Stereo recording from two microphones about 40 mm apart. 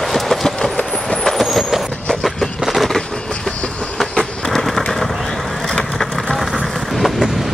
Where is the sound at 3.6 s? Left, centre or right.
Left.